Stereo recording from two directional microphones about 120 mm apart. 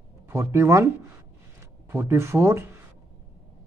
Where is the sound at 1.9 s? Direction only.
25° right (ahead or behind).